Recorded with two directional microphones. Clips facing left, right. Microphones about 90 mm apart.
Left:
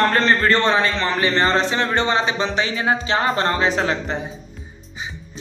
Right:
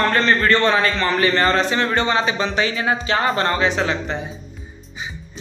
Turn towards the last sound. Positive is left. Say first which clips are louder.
# even
turn(degrees=40)  # may be behind; listen again after turning